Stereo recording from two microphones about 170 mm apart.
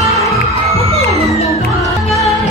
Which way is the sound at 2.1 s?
40° left (ahead or behind).